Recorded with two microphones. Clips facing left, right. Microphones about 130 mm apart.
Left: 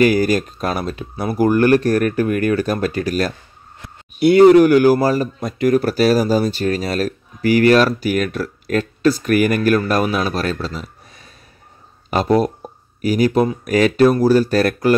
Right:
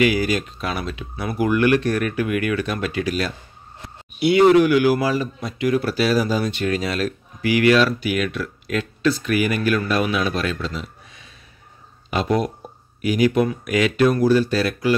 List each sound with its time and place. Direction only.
0.0 s speech: 45° left (ahead or behind)